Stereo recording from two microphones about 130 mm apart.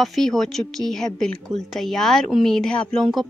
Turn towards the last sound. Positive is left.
turn(degrees=5)  # may be behind; listen again after turning